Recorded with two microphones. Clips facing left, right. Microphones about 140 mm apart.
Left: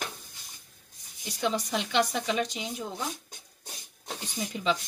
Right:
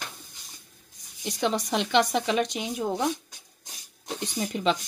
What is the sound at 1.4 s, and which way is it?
Speech, 85° right.